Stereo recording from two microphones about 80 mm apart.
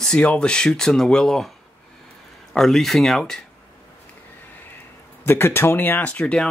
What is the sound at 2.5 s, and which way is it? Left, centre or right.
Speech, centre.